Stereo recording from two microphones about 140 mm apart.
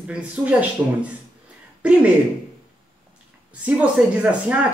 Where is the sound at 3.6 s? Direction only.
10° right (ahead or behind).